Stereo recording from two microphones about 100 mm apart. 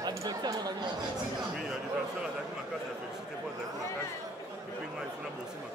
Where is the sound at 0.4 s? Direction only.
40° right (ahead or behind).